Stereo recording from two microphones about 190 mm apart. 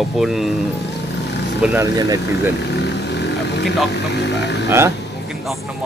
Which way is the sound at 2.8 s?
65° left (ahead or behind).